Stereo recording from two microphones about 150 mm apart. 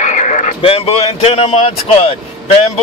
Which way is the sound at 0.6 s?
40° left (ahead or behind).